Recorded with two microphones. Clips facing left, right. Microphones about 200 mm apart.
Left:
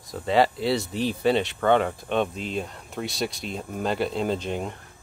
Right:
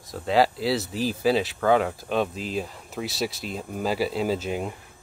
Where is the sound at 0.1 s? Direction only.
Centre (ahead or behind).